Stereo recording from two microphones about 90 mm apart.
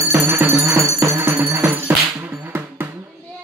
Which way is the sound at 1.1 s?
25° right (ahead or behind).